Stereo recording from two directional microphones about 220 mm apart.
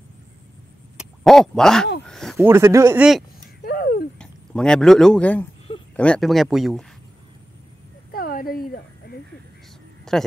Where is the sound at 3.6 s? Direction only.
45° left (ahead or behind).